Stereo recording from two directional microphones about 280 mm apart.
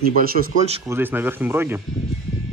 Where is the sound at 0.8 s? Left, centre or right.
Centre.